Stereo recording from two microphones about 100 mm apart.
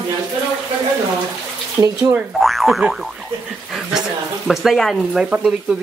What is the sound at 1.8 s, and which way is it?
Speech, 25° right (ahead or behind).